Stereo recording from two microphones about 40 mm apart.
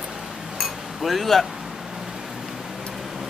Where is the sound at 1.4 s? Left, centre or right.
Centre.